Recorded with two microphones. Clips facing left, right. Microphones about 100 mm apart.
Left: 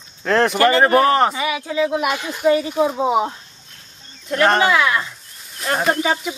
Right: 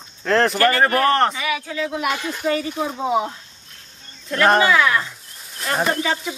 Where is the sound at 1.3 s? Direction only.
25° left (ahead or behind).